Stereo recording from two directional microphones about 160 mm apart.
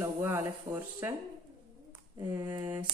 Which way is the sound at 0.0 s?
15° right (ahead or behind).